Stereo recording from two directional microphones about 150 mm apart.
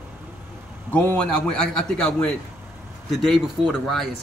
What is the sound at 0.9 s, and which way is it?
A man's voice, 10° left (ahead or behind).